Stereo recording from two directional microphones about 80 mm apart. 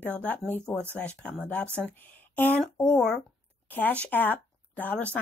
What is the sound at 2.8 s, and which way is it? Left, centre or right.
Speech, centre.